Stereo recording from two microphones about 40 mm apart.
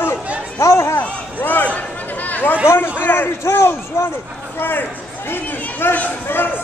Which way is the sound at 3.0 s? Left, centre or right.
Left.